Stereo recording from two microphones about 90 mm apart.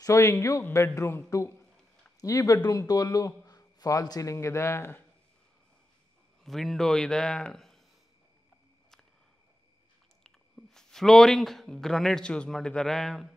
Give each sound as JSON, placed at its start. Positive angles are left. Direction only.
{"t": 0.0, "sound": "a man's voice", "side_deg": 35}
{"t": 0.7, "sound": "a man's voice", "side_deg": 20}
{"t": 6.4, "sound": "a man's voice", "side_deg": 5}
{"t": 10.2, "sound": "speech", "side_deg": 5}